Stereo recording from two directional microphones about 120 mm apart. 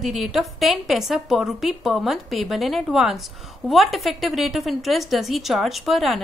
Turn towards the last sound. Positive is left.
turn(degrees=0)  # may be behind; listen again after turning